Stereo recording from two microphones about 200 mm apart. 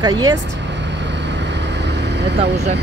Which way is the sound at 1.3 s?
60° right (ahead or behind).